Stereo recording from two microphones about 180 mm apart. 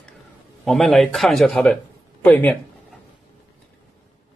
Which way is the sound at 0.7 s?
Centre (ahead or behind).